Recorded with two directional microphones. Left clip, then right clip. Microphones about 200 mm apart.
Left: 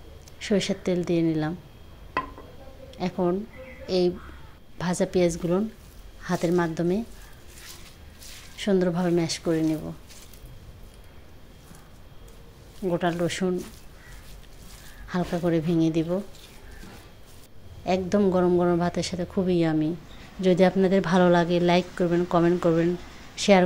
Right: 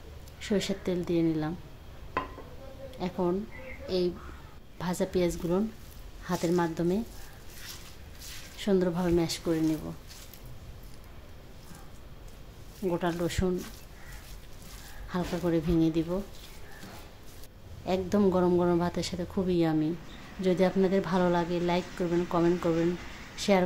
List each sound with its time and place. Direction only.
0.4 s a woman's voice: 15° left (ahead or behind)
3.0 s a woman's voice: 15° left (ahead or behind)
8.5 s a woman's voice: 10° left (ahead or behind)
12.8 s a woman's voice: 15° left (ahead or behind)
15.0 s a woman's voice: 15° left (ahead or behind)
17.8 s a woman's voice: 10° left (ahead or behind)